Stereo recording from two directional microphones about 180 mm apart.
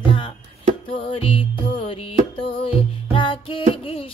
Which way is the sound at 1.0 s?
30° left (ahead or behind).